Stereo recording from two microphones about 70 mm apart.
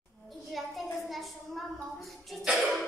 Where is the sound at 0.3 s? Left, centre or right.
Centre.